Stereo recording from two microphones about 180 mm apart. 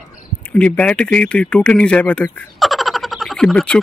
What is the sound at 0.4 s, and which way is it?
Speech, 5° left (ahead or behind).